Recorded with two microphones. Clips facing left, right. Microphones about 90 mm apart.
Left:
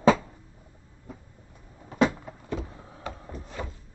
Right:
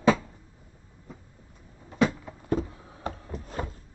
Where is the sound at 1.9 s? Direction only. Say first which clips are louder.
Left 1 dB; 55° left (ahead or behind).